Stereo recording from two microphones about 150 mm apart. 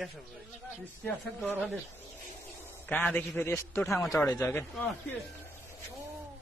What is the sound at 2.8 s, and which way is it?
A man's voice, 10° left (ahead or behind).